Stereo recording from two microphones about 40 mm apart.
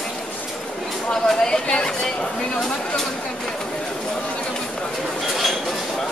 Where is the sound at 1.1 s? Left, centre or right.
Centre.